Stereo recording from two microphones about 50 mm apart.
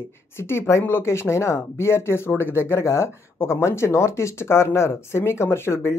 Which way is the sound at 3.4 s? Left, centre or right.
Left.